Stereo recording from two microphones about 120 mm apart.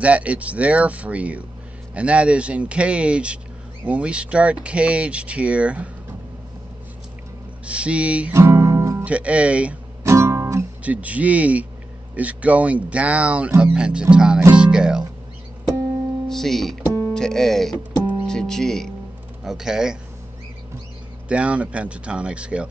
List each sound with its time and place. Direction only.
0.0 s speech: 10° right (ahead or behind)
7.6 s speech: 10° right (ahead or behind)
8.4 s music: 25° right (ahead or behind)
9.0 s speech: 10° right (ahead or behind)
10.0 s guitar: 20° right (ahead or behind)
10.8 s speech: 10° right (ahead or behind)
14.5 s music: 5° right (ahead or behind)
16.3 s speech: 5° left (ahead or behind)
21.3 s speech: 10° right (ahead or behind)